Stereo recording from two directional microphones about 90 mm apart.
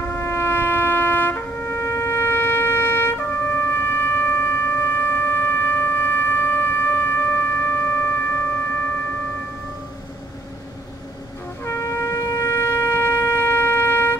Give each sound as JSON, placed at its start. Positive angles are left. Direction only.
{"t": 0.1, "sound": "shofar", "side_deg": 25}
{"t": 11.6, "sound": "shofar", "side_deg": 30}